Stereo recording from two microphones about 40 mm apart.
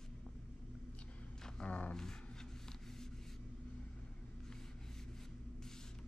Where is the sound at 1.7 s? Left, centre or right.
Left.